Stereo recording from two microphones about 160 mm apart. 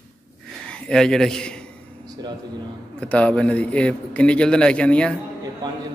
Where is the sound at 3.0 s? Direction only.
5° left (ahead or behind).